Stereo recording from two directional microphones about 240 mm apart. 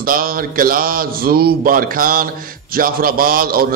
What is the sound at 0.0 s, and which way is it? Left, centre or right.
Music, right.